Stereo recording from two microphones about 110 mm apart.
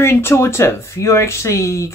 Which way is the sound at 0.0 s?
25° left (ahead or behind).